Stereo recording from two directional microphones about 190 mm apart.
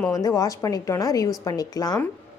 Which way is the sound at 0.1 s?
20° left (ahead or behind).